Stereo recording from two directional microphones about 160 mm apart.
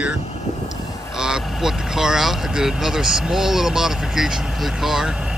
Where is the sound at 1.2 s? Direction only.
5° right (ahead or behind).